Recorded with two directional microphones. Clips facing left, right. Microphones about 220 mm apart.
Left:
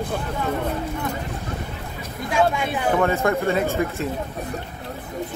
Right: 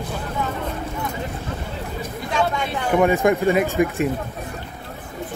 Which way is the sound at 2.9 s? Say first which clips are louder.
Right 5 dB; 15° right (ahead or behind).